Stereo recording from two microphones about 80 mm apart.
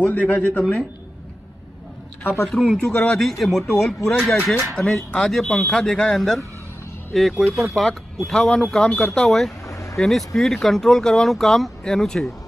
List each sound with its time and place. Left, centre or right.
0.0 s speech: centre
2.4 s speech: centre
9.7 s a sound: left
9.9 s speech: centre